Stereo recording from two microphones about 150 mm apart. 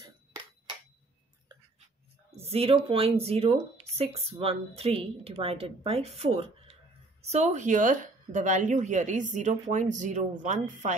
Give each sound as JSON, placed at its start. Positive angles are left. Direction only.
{"t": 2.3, "sound": "a woman's voice", "side_deg": -40}